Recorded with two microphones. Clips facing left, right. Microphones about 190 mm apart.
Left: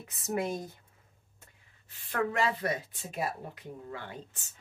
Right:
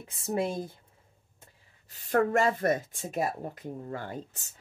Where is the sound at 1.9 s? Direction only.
45° right (ahead or behind).